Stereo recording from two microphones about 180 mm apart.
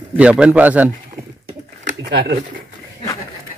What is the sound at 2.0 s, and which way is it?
Speech, 70° right (ahead or behind).